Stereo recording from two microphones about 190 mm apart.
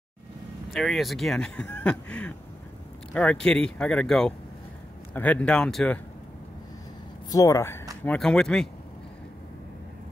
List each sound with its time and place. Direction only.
0.7 s speech: centre (ahead or behind)
7.2 s speech: 15° left (ahead or behind)
8.0 s speech: 5° left (ahead or behind)